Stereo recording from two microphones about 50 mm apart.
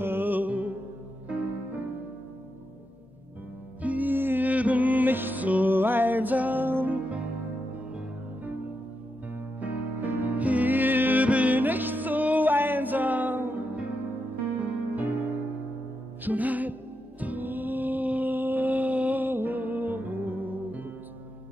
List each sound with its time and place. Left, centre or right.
0.0 s music: right
3.8 s music: right
4.5 s music: right
9.3 s music: right